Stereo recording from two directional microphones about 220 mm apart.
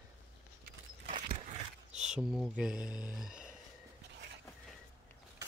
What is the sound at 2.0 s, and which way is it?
Speech, centre (ahead or behind).